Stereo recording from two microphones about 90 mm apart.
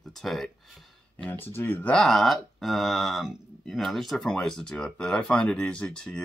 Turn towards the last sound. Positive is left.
turn(degrees=10)  # may be behind; listen again after turning